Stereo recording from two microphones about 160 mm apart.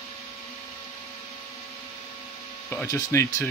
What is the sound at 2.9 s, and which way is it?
Speech, 20° left (ahead or behind).